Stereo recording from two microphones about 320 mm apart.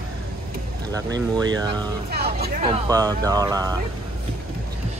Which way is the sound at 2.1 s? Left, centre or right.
Right.